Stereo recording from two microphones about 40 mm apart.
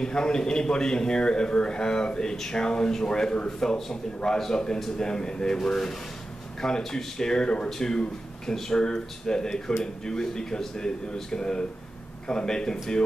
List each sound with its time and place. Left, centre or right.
0.0 s a man's voice: centre